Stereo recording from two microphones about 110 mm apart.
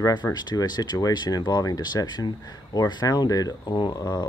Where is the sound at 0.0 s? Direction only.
40° left (ahead or behind).